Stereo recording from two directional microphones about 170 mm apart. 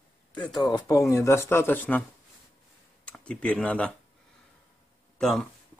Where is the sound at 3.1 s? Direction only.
5° left (ahead or behind).